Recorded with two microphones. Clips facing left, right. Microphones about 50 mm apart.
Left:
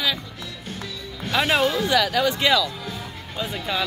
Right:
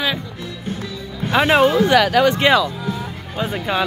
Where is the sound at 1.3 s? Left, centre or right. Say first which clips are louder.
Right 6 dB; right.